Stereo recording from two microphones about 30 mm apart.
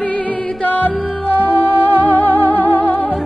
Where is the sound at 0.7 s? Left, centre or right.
Left.